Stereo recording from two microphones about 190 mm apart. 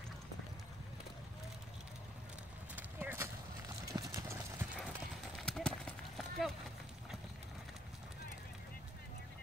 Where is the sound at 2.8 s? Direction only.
10° right (ahead or behind).